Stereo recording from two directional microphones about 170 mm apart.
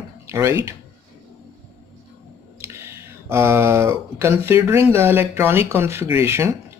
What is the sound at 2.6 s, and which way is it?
Speech, 15° right (ahead or behind).